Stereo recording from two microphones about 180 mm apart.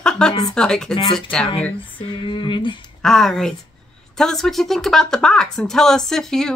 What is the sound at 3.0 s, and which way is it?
Speech, centre (ahead or behind).